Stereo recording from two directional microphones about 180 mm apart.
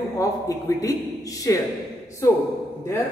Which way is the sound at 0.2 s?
20° left (ahead or behind).